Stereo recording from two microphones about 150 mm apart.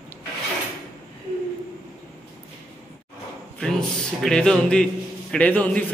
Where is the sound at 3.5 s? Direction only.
5° left (ahead or behind).